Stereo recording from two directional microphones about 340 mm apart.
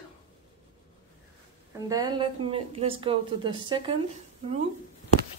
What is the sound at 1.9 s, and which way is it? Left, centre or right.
Speech, centre.